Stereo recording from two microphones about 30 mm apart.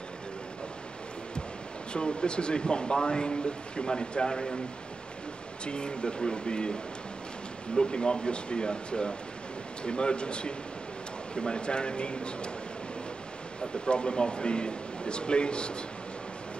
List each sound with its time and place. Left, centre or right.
2.0 s speech: left
5.7 s speech: left
13.8 s speech: left